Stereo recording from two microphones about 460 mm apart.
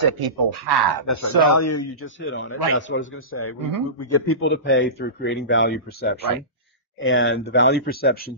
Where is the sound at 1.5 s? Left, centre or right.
Left.